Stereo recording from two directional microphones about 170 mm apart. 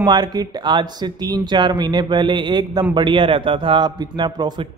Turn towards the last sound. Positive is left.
turn(degrees=-25)  # may be behind; listen again after turning